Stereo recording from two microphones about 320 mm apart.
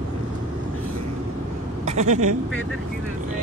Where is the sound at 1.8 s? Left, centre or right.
Right.